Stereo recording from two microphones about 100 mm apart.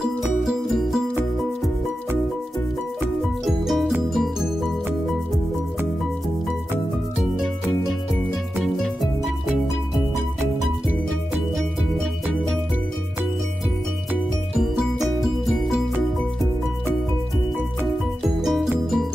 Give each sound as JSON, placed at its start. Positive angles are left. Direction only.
{"t": 0.2, "sound": "music", "side_deg": -5}
{"t": 3.4, "sound": "music", "side_deg": 0}
{"t": 8.8, "sound": "music", "side_deg": 0}
{"t": 15.1, "sound": "music", "side_deg": 0}
{"t": 18.4, "sound": "music", "side_deg": -5}